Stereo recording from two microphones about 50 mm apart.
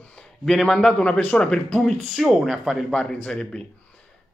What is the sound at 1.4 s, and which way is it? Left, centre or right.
Speech, centre.